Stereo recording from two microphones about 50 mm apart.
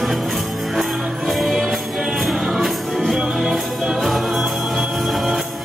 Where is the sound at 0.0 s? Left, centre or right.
Centre.